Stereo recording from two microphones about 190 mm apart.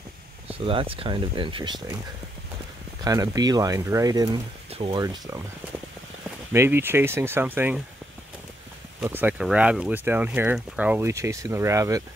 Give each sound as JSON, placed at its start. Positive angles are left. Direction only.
{"t": 0.6, "sound": "speech", "side_deg": -30}
{"t": 3.0, "sound": "speech", "side_deg": -20}
{"t": 6.5, "sound": "speech", "side_deg": -10}
{"t": 9.0, "sound": "speech", "side_deg": -10}